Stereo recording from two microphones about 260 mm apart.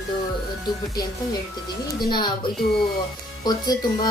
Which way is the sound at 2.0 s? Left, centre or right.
Centre.